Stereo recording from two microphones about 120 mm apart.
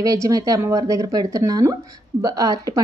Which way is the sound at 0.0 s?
30° right (ahead or behind).